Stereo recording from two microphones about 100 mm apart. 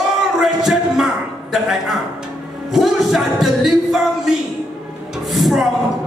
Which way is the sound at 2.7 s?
Centre (ahead or behind).